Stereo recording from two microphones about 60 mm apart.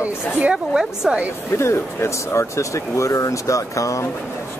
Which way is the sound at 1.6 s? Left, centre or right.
Left.